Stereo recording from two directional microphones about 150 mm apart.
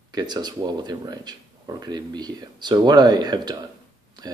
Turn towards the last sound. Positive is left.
turn(degrees=-25)  # may be behind; listen again after turning